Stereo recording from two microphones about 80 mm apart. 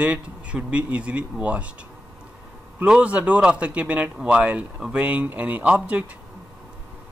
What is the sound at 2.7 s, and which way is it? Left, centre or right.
Speech, centre.